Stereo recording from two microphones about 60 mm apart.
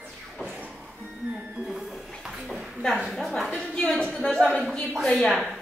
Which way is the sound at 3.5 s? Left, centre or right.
Centre.